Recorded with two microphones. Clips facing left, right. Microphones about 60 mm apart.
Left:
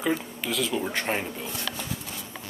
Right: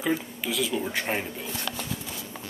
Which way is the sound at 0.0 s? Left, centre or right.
Centre.